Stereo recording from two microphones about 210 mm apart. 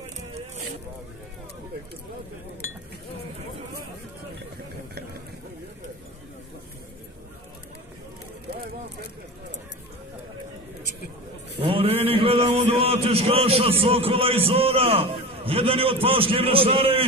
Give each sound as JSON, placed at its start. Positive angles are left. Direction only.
{"t": 11.6, "sound": "a man's voice", "side_deg": -25}